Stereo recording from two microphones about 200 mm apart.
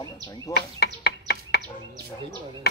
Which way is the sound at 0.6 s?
55° left (ahead or behind).